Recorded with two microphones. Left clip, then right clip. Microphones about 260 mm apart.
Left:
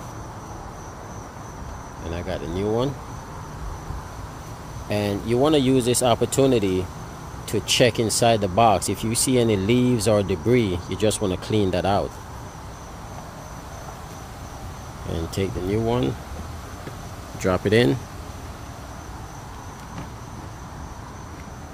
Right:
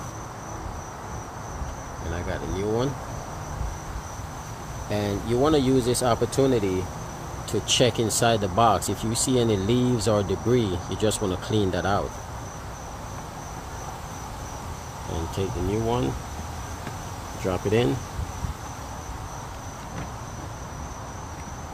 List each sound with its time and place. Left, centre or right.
2.2 s speech: left
4.8 s speech: left
15.3 s speech: left
17.4 s cricket: left